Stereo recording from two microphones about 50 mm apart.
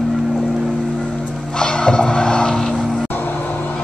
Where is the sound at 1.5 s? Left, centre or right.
Centre.